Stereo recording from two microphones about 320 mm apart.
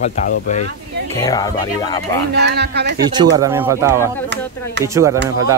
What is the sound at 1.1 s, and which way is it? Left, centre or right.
Speech, centre.